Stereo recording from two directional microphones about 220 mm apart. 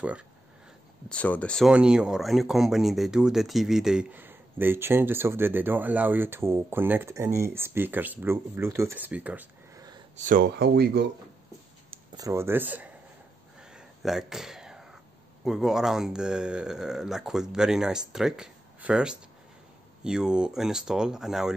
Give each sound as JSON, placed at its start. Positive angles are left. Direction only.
{"t": 1.0, "sound": "speech", "side_deg": 5}
{"t": 10.1, "sound": "speech", "side_deg": -35}
{"t": 12.2, "sound": "speech", "side_deg": -10}
{"t": 13.7, "sound": "a sound", "side_deg": 0}
{"t": 15.4, "sound": "speech", "side_deg": 0}